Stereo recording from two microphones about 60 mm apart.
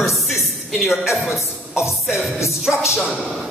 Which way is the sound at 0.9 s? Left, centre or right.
Centre.